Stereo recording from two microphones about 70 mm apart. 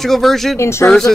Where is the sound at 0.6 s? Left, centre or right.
Left.